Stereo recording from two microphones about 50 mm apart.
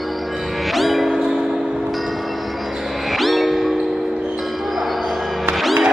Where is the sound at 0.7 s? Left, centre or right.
Centre.